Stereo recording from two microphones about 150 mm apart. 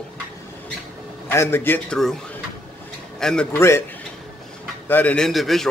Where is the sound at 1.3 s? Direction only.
15° left (ahead or behind).